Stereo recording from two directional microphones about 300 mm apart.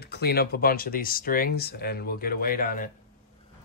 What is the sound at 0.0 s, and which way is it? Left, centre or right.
Speech, left.